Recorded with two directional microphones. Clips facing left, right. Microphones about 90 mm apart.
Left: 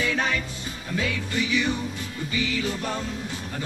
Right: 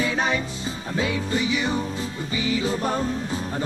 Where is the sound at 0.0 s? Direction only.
25° right (ahead or behind).